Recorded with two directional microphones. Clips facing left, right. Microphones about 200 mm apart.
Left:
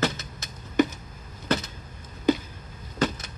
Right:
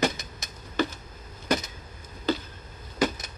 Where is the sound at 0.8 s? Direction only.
20° left (ahead or behind).